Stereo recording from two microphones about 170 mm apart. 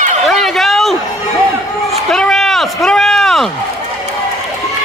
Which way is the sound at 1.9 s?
5° left (ahead or behind).